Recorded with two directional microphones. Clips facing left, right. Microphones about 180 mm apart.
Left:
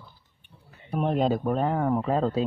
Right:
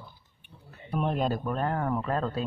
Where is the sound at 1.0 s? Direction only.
20° left (ahead or behind).